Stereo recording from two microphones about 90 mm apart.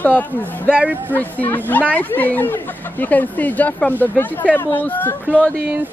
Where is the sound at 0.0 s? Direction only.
15° left (ahead or behind).